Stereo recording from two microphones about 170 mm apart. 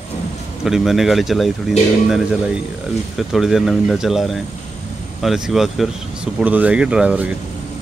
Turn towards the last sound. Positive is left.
turn(degrees=-10)  # may be behind; listen again after turning